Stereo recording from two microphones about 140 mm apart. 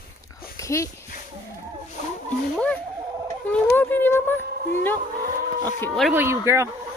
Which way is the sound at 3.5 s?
15° left (ahead or behind).